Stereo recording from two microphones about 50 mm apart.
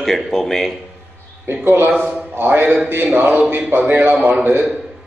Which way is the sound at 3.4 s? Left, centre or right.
Right.